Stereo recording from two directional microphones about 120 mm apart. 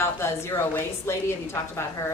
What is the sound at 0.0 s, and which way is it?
A woman's voice, 20° left (ahead or behind).